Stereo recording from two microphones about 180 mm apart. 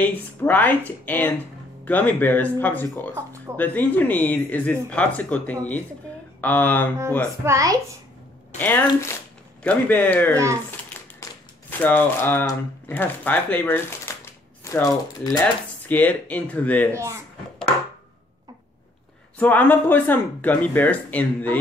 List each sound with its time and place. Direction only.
0.0 s speech: 10° left (ahead or behind)
7.4 s speech: 15° right (ahead or behind)
8.5 s speech: 10° left (ahead or behind)
10.3 s speech: 15° right (ahead or behind)
11.2 s a sound: 15° left (ahead or behind)
11.8 s speech: 10° left (ahead or behind)
16.9 s speech: 15° right (ahead or behind)
19.3 s speech: 10° left (ahead or behind)